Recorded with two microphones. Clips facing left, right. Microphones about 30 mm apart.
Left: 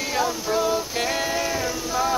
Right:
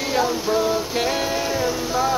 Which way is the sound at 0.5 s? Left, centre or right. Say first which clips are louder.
Right 2 dB; centre.